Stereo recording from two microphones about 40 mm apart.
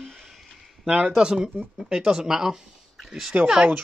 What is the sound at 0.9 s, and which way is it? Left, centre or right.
Speech, right.